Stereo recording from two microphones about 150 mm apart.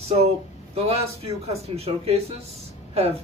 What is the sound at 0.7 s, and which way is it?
Speech, 45° right (ahead or behind).